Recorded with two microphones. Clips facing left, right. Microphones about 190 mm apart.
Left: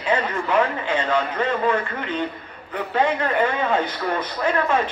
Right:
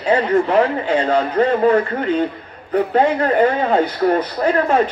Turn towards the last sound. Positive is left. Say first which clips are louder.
# right 5 dB
turn(degrees=-40)  # may be behind; listen again after turning